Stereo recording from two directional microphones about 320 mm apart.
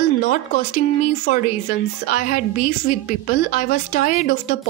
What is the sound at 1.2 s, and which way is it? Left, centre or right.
A woman's voice, left.